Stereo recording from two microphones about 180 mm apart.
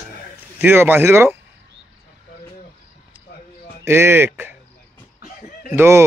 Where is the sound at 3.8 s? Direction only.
15° right (ahead or behind).